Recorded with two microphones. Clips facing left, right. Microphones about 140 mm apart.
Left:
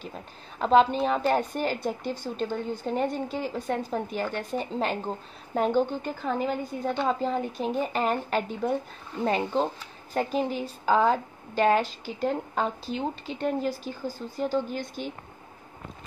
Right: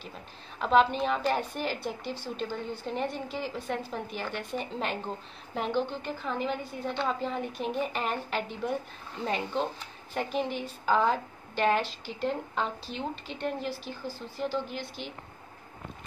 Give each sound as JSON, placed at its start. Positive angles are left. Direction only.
{"t": 0.6, "sound": "a woman's voice", "side_deg": 40}